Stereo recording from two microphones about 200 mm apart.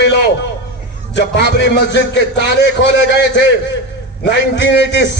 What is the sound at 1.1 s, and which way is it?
A man's voice, 60° left (ahead or behind).